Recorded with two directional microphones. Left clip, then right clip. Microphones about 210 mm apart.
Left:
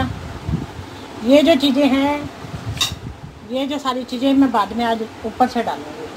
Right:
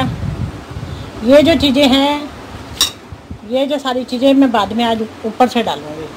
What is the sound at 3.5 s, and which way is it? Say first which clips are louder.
Speech: right 6 dB; 15° right (ahead or behind).